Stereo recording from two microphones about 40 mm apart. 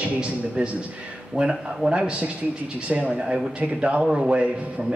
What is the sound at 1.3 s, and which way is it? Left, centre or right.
Music, right.